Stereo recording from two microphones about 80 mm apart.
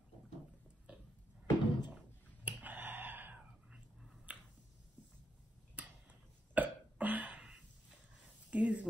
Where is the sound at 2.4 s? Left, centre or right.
Right.